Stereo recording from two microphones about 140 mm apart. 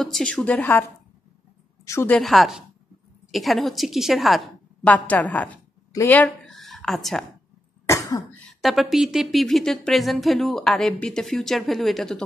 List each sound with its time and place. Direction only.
0.0 s a woman's voice: 5° left (ahead or behind)
1.9 s a woman's voice: 20° left (ahead or behind)
2.1 s speech: centre (ahead or behind)
4.8 s a woman's voice: 10° left (ahead or behind)
7.8 s cough: 25° left (ahead or behind)
8.5 s speech: centre (ahead or behind)